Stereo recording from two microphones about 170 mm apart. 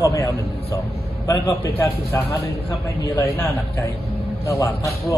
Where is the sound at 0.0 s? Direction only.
15° left (ahead or behind).